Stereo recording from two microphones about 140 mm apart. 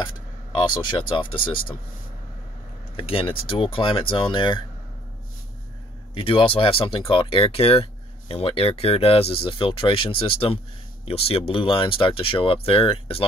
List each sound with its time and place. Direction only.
0.0 s speech: 35° left (ahead or behind)
3.0 s speech: 40° left (ahead or behind)
6.1 s speech: 40° left (ahead or behind)